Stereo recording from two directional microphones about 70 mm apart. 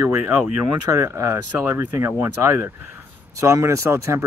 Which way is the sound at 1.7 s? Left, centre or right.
Right.